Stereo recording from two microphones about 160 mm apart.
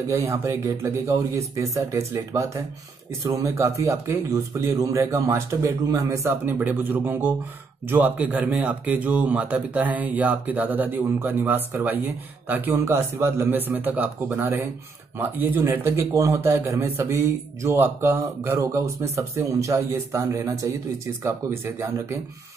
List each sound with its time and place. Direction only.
0.1 s a man's voice: 20° right (ahead or behind)